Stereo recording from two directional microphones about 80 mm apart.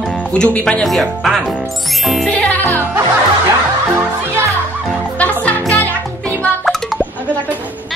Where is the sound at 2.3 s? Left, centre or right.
Centre.